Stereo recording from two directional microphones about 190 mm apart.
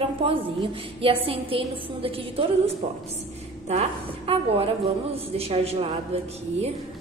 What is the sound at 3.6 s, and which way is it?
A woman's voice, 35° right (ahead or behind).